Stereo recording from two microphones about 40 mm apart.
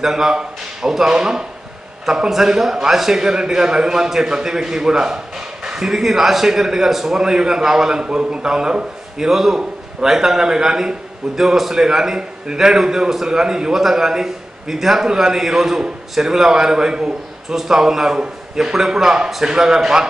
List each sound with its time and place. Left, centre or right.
0.0 s a man's voice: centre
1.1 s speech: centre
2.0 s a man's voice: centre
9.3 s a man's voice: centre